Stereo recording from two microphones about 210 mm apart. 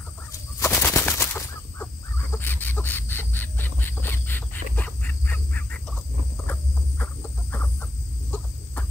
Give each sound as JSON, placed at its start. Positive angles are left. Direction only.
{"t": 0.3, "sound": "fowl", "side_deg": 15}
{"t": 2.3, "sound": "wild animals", "side_deg": 10}
{"t": 7.5, "sound": "chicken", "side_deg": 10}